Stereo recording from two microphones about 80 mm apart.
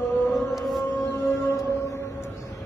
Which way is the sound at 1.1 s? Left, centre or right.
Left.